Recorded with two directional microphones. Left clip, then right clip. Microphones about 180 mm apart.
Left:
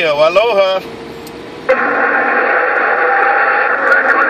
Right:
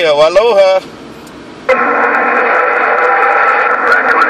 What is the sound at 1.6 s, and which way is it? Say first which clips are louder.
Radio: right 2 dB; 40° right (ahead or behind).